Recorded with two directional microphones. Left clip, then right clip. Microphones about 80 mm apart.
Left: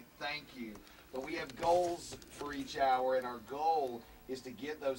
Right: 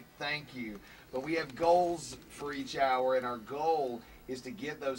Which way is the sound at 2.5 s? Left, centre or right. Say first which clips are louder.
Right 2 dB; right.